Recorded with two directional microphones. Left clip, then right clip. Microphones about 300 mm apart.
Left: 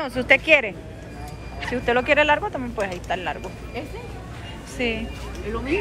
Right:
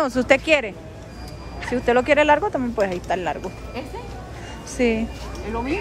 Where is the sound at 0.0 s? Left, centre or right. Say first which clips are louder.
Right 1 dB; centre.